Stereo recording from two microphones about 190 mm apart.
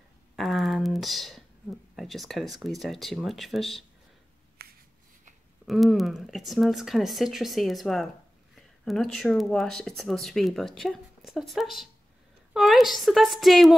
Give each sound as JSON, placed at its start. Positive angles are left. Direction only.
{"t": 0.4, "sound": "a sound", "side_deg": 0}
{"t": 2.0, "sound": "speech", "side_deg": 0}
{"t": 4.6, "sound": "finger snapping", "side_deg": -55}
{"t": 5.7, "sound": "speech", "side_deg": 0}